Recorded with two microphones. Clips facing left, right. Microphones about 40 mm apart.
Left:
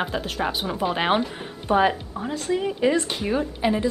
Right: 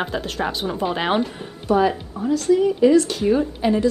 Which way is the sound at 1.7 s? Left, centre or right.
Left.